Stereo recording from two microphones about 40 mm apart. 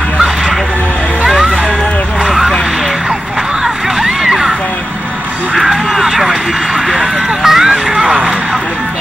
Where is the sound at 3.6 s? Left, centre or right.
Centre.